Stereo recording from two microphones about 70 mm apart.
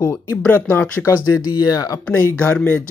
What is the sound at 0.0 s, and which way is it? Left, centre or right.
Speech, left.